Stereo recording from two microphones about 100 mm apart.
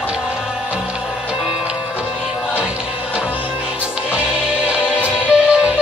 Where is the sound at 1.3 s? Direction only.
5° right (ahead or behind).